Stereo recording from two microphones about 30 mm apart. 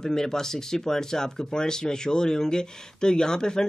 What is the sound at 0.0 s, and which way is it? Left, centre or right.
Speech, centre.